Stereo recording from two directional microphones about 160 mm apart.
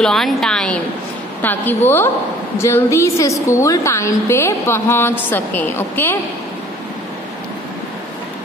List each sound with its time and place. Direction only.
0.0 s a woman's voice: 5° left (ahead or behind)